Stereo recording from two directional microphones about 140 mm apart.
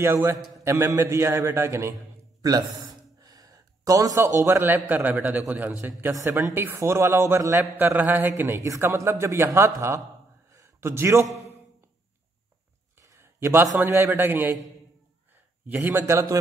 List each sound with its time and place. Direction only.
0.0 s speech: 20° right (ahead or behind)
10.5 s a sound: 20° right (ahead or behind)
12.9 s a man's voice: 20° right (ahead or behind)
15.7 s a man's voice: 15° right (ahead or behind)